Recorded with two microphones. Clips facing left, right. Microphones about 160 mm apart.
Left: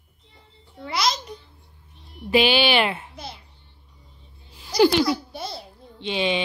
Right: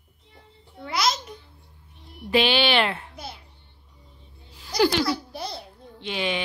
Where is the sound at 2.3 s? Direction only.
5° left (ahead or behind).